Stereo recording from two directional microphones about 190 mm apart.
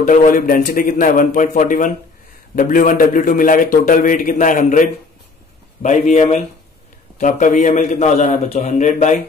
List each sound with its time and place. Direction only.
0.0 s a man's voice: 40° left (ahead or behind)